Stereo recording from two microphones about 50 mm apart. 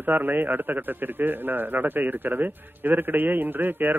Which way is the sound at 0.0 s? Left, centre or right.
Right.